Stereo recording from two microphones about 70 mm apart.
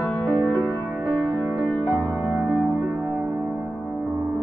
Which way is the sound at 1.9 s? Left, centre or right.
Right.